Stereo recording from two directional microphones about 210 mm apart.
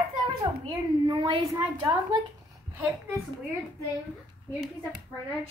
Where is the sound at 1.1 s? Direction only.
25° right (ahead or behind).